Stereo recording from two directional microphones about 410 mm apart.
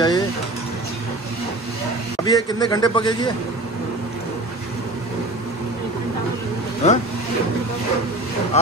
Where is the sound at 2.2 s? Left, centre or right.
Centre.